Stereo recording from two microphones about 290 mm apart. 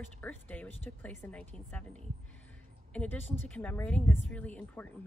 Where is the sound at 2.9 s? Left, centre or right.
Centre.